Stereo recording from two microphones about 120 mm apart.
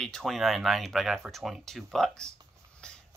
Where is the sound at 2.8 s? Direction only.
5° left (ahead or behind).